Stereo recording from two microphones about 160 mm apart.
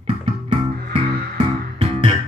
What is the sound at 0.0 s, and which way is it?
Music, 35° right (ahead or behind).